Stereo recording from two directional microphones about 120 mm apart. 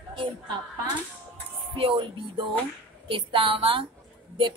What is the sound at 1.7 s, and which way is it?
A woman's voice, 45° right (ahead or behind).